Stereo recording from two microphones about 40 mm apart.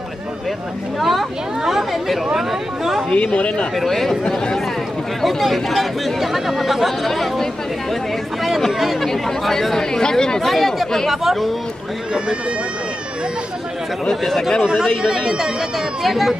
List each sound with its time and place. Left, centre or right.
0.9 s speech: centre
3.1 s speech: left
3.7 s speech: centre
5.2 s speech: centre
8.5 s speech: centre
10.4 s speech: centre
11.1 s speech: centre
14.6 s speech: centre
15.0 s speech: centre